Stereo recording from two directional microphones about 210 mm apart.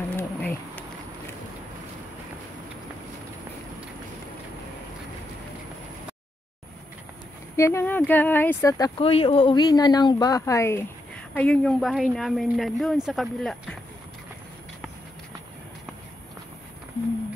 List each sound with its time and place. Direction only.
0.1 s insect: 10° left (ahead or behind)
7.5 s speech: 10° left (ahead or behind)